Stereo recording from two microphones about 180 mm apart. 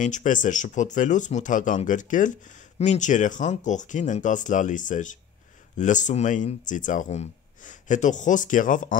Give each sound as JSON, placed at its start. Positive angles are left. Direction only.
{"t": 0.0, "sound": "speech", "side_deg": 45}